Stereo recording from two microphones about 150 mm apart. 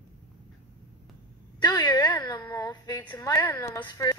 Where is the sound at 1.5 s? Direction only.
30° left (ahead or behind).